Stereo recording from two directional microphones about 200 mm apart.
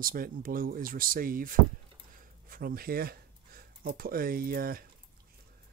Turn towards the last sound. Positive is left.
turn(degrees=-45)  # may be behind; listen again after turning